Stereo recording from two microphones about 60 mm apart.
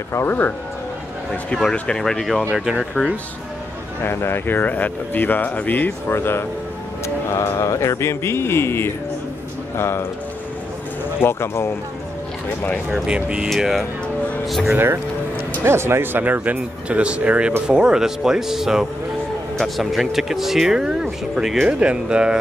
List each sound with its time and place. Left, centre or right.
0.3 s speech: left
1.6 s speech: centre
2.5 s speech: centre
2.8 s speech: centre
4.0 s speech: left
6.1 s speech: left
7.3 s speech: left
11.1 s speech: left
13.0 s speech: centre
15.6 s speech: right; by 21.6 s centre
21.6 s speech: centre